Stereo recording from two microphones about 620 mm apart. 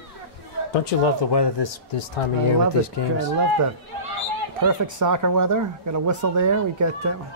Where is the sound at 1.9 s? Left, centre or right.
Left.